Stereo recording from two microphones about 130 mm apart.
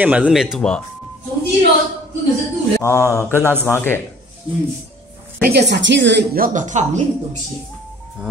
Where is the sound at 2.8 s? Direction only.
20° left (ahead or behind).